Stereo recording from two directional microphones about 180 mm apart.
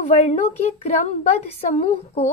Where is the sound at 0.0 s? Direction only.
45° left (ahead or behind).